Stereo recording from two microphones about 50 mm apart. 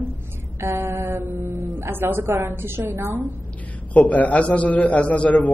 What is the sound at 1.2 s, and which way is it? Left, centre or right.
Speech, right.